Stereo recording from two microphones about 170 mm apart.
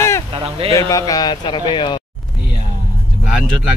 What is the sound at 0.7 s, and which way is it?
Speech, 20° left (ahead or behind).